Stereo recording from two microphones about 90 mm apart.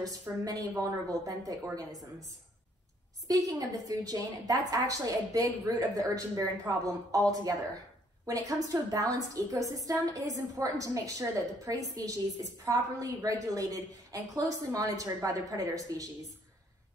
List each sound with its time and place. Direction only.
0.5 s a woman's voice: 40° right (ahead or behind)
3.3 s a woman's voice: 45° right (ahead or behind)